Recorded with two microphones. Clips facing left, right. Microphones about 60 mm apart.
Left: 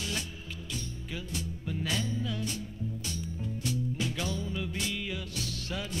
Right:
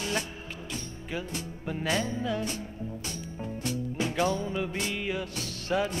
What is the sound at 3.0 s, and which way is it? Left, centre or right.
Music, right.